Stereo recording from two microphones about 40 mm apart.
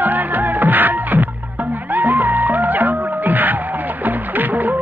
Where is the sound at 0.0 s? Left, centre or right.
Right.